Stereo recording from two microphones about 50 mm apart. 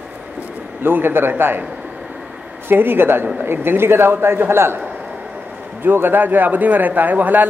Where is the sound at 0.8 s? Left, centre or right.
Right.